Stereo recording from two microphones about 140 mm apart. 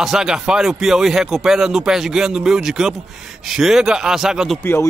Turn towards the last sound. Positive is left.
turn(degrees=0)  # may be behind; listen again after turning